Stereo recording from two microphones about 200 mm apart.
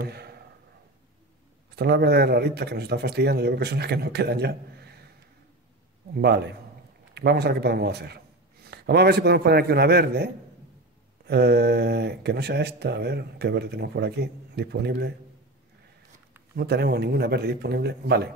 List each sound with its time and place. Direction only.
0.0 s a sound: 55° right (ahead or behind)
1.8 s a man's voice: 55° right (ahead or behind)
6.1 s a man's voice: 55° right (ahead or behind)
16.5 s a man's voice: 55° right (ahead or behind)